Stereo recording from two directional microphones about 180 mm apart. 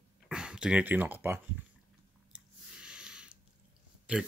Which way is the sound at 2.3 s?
5° right (ahead or behind).